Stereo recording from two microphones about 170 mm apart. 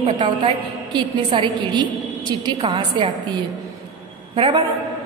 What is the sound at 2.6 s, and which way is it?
Speech, 40° right (ahead or behind).